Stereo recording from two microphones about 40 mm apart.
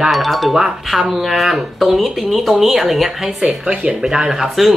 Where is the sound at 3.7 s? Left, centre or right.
Right; by 4.7 s centre.